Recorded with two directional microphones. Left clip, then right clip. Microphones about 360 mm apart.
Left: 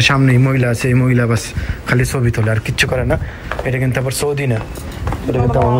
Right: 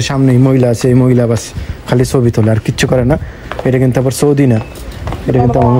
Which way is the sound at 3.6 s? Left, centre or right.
Right.